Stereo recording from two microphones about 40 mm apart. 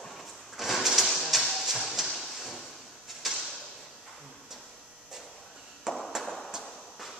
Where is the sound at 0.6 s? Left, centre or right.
Centre.